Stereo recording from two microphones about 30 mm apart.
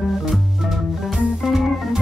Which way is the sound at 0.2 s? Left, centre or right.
Centre.